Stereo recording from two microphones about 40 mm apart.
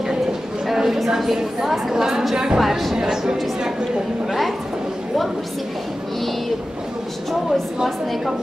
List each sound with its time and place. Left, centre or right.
0.7 s a woman's voice: centre
2.6 s a woman's voice: centre